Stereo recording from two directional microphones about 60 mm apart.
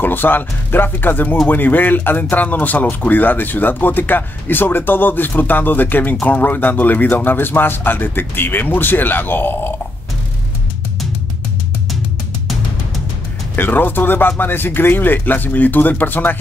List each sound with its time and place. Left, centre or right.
0.0 s speech: left
13.6 s speech: left